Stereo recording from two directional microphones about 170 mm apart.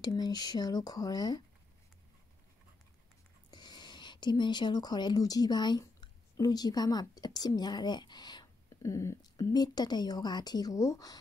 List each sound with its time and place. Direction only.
0.0 s speech: 25° left (ahead or behind)
3.4 s speech: 25° left (ahead or behind)